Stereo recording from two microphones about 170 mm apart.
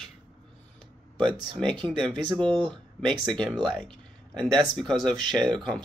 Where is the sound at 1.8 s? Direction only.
30° right (ahead or behind).